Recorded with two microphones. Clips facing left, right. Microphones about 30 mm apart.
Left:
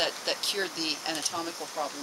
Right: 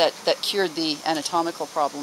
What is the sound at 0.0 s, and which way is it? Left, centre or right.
Speech, right.